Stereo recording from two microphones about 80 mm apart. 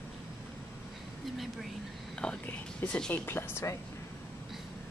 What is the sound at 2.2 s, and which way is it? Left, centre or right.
Speech, centre.